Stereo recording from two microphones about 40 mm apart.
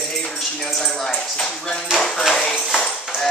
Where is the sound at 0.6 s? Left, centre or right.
Centre.